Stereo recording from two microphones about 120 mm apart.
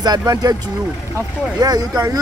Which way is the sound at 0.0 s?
35° right (ahead or behind).